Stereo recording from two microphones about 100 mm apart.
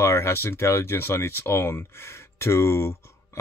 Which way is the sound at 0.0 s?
25° left (ahead or behind).